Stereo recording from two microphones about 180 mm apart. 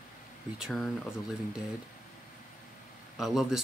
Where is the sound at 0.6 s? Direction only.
5° left (ahead or behind).